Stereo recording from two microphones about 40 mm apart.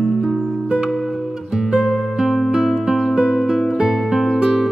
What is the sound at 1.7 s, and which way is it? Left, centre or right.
Music, centre.